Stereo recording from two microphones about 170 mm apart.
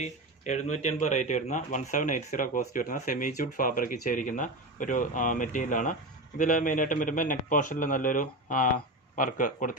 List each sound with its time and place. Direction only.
0.4 s a man's voice: 45° left (ahead or behind)